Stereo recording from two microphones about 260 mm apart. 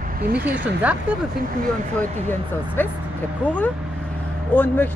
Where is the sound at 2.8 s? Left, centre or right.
Centre.